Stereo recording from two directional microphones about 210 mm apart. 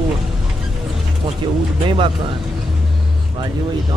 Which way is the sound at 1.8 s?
25° right (ahead or behind).